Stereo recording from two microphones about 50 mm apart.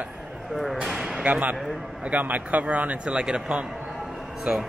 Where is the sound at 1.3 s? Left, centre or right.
Right.